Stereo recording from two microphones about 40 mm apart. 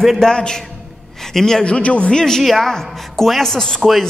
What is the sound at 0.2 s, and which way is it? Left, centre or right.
A man's voice, centre.